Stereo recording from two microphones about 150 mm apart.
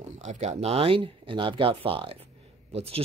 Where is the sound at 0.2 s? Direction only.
50° right (ahead or behind).